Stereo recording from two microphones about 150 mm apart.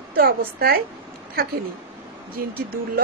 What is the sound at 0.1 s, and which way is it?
Speech, 80° right.